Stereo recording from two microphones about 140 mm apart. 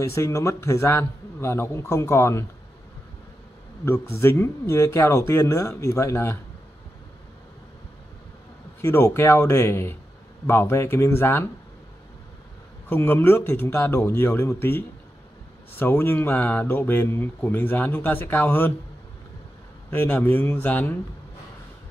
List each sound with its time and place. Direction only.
0.0 s a man's voice: 20° left (ahead or behind)
4.2 s a man's voice: 20° left (ahead or behind)
8.8 s speech: 15° left (ahead or behind)
12.9 s speech: 15° left (ahead or behind)
19.9 s speech: 15° left (ahead or behind)